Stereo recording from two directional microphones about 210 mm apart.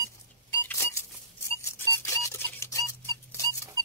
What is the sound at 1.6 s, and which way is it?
Squeak, 15° left (ahead or behind).